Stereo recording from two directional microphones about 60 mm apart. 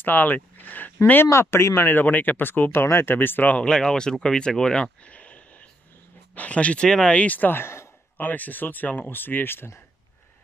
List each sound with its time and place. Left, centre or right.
0.0 s speech: left
1.3 s speech: left
3.5 s speech: centre; by 8.3 s left
8.3 s speech: left